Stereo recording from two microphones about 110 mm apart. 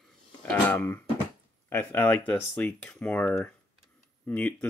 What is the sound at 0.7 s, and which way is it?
Speech, 20° left (ahead or behind).